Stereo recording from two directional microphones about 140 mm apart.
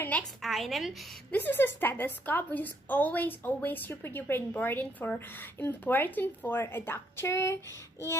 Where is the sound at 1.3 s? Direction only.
15° left (ahead or behind).